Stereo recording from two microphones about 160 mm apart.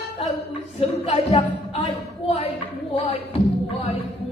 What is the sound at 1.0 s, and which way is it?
Speech, 40° left (ahead or behind).